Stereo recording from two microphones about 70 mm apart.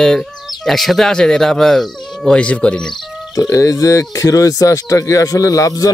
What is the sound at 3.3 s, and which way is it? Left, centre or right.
Speech, left.